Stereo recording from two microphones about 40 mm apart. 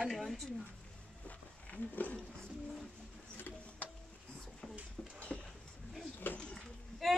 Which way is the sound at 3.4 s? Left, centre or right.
Left.